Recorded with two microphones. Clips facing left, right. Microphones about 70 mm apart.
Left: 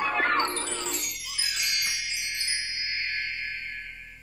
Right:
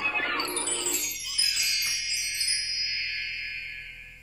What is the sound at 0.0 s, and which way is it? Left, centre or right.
Music, left.